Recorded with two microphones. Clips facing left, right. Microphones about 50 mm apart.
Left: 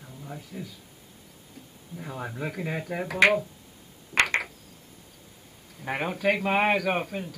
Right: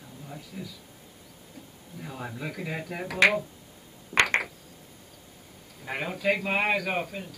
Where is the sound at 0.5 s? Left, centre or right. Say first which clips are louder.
Left 1 dB; centre.